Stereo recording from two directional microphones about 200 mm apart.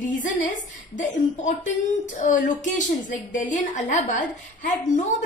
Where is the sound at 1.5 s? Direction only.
40° left (ahead or behind).